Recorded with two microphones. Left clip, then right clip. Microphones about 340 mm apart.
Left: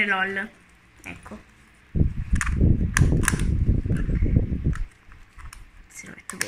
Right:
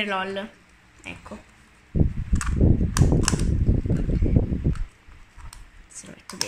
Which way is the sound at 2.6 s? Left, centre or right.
Right.